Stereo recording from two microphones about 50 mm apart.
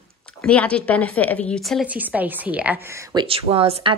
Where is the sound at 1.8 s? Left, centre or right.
Right.